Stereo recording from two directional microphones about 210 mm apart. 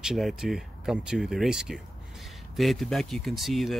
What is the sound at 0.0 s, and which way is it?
Speech, centre (ahead or behind).